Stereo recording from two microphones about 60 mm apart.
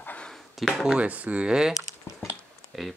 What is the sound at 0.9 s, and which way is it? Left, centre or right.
Speech, right.